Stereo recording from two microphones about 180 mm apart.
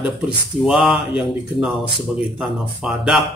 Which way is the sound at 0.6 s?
Centre (ahead or behind).